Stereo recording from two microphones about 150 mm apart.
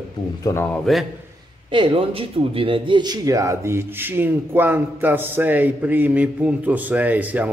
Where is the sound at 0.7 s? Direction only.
Centre (ahead or behind).